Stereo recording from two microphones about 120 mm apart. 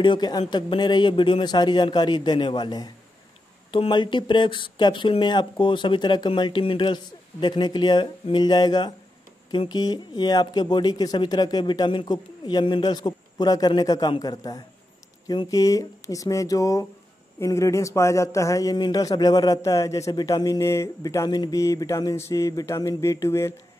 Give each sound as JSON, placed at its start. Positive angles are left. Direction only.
{"t": 0.0, "sound": "a man's voice", "side_deg": 40}